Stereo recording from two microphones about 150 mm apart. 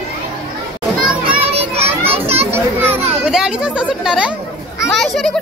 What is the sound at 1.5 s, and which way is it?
Children playing, 40° right (ahead or behind).